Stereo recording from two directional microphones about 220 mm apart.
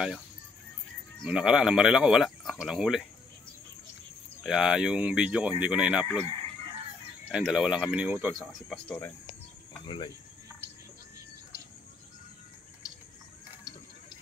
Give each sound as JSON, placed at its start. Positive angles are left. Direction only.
{"t": 1.2, "sound": "speech", "side_deg": -5}
{"t": 4.4, "sound": "speech", "side_deg": 0}
{"t": 7.2, "sound": "speech", "side_deg": 0}
{"t": 9.8, "sound": "speech", "side_deg": 20}